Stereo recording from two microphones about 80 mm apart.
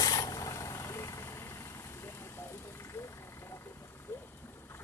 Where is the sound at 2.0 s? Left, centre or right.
Left.